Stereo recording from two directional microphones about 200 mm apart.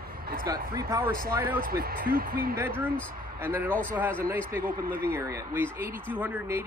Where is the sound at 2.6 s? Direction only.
10° right (ahead or behind).